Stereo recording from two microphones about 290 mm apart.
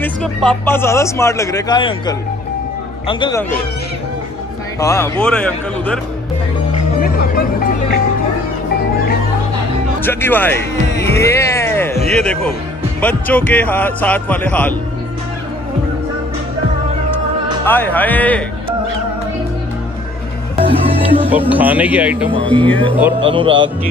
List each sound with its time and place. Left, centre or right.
0.0 s a man's voice: centre
4.7 s a man's voice: centre
7.0 s music: left
10.0 s a man's voice: centre
17.6 s a man's voice: centre
20.5 s music: centre
21.3 s a man's voice: centre
23.2 s speech: centre